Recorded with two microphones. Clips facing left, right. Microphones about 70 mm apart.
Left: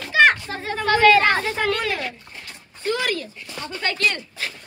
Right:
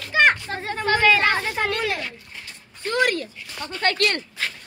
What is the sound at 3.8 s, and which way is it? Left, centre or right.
Speech, right.